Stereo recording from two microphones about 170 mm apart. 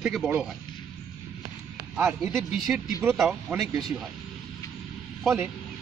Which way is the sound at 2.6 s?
Centre (ahead or behind).